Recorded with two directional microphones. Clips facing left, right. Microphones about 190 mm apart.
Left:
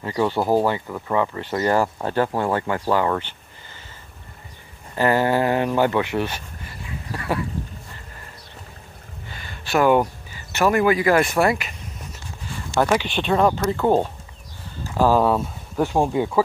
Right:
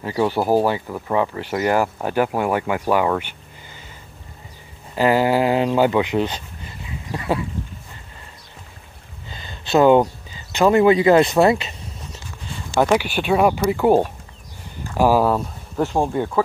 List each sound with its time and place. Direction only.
0.0 s speech: 10° right (ahead or behind)
4.9 s speech: 15° right (ahead or behind)
9.3 s speech: 20° right (ahead or behind)
12.7 s speech: 10° right (ahead or behind)
15.2 s speech: centre (ahead or behind)